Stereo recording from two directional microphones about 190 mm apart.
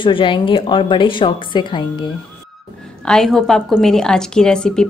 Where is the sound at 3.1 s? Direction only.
Centre (ahead or behind).